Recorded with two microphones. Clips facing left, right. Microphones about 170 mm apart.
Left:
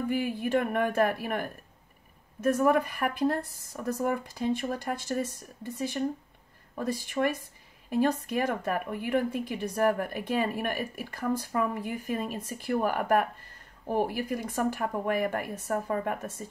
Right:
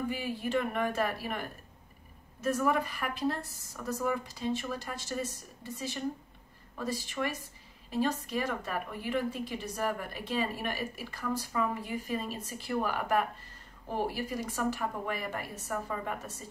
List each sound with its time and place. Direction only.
0.1 s a woman's voice: 55° left (ahead or behind)